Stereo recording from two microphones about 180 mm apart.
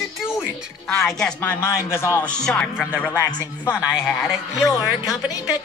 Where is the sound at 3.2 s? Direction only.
20° left (ahead or behind).